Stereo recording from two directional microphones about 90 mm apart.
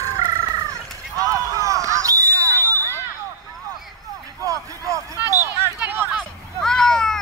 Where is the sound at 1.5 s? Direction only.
35° right (ahead or behind).